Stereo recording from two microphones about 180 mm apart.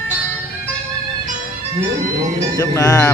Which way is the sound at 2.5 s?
15° left (ahead or behind).